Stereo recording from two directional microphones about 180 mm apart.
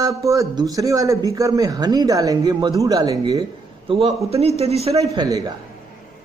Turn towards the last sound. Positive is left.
turn(degrees=-20)  # may be behind; listen again after turning